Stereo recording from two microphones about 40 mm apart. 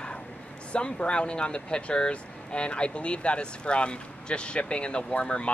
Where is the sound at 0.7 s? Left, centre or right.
Left.